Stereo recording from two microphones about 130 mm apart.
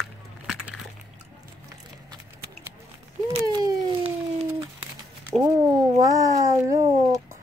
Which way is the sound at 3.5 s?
30° right (ahead or behind).